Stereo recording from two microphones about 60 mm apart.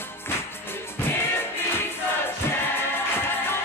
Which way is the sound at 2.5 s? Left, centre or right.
Left.